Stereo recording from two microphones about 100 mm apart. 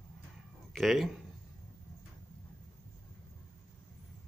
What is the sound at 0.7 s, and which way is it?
Speech, centre (ahead or behind).